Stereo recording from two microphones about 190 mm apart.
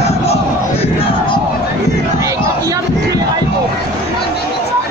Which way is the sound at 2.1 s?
15° right (ahead or behind).